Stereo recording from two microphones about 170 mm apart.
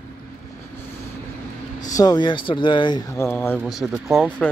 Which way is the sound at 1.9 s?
25° left (ahead or behind).